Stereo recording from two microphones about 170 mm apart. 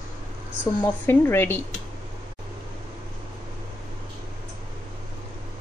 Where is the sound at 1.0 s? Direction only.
15° left (ahead or behind).